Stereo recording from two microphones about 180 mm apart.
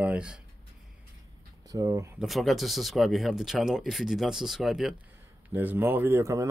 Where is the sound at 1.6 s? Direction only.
20° right (ahead or behind).